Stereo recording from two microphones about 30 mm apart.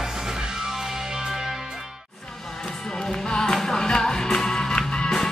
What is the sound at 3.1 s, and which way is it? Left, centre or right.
Music, left.